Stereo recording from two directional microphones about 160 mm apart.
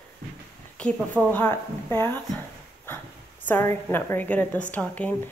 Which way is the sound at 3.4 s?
15° left (ahead or behind).